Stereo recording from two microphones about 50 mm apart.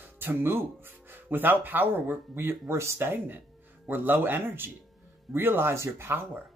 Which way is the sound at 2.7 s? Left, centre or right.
Right.